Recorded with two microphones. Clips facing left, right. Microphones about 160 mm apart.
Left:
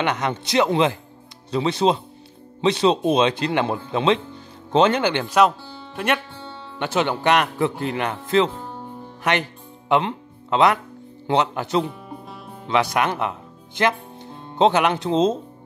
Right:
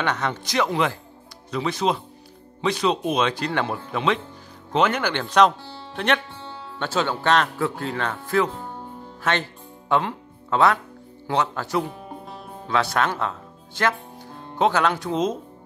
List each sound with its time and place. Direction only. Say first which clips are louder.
0.0 s speech: left 2 dB; 20° left (ahead or behind)
5.9 s speech: even; 5° left (ahead or behind)
6.8 s speech: left 3 dB; 20° left (ahead or behind)
9.2 s music: left 2 dB; 15° left (ahead or behind)
11.2 s speech: left 3 dB; 20° left (ahead or behind)